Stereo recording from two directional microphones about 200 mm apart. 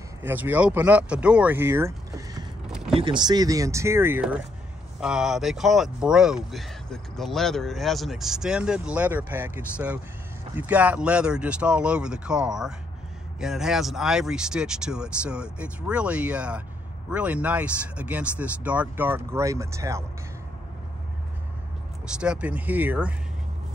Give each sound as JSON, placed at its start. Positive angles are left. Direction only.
{"t": 0.2, "sound": "speech", "side_deg": -10}
{"t": 2.9, "sound": "speech", "side_deg": -25}
{"t": 22.0, "sound": "speech", "side_deg": -5}